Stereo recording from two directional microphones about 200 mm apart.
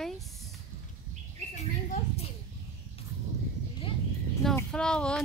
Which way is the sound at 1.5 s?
35° left (ahead or behind).